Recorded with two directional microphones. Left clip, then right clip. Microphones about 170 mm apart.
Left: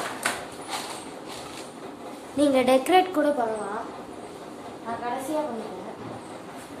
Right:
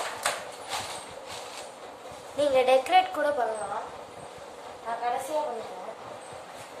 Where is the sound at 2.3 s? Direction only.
20° left (ahead or behind).